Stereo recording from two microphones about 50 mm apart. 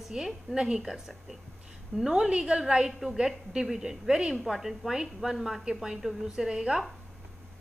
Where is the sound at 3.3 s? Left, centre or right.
Centre.